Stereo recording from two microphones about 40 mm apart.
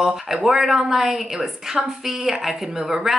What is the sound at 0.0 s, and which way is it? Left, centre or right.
A woman's voice, centre.